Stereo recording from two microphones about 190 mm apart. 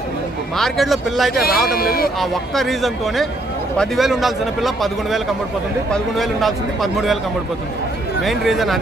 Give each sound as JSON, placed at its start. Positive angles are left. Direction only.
{"t": 0.6, "sound": "speech", "side_deg": 0}
{"t": 1.3, "sound": "speech", "side_deg": 50}
{"t": 2.1, "sound": "speech", "side_deg": 0}
{"t": 8.2, "sound": "speech", "side_deg": 0}